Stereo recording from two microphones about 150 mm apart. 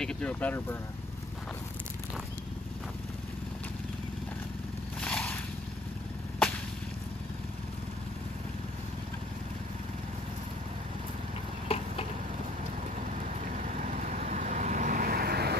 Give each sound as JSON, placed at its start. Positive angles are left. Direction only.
{"t": 0.0, "sound": "speech", "side_deg": 5}
{"t": 5.0, "sound": "vehicle", "side_deg": 5}
{"t": 11.7, "sound": "a sound", "side_deg": 40}
{"t": 13.6, "sound": "vehicle", "side_deg": -55}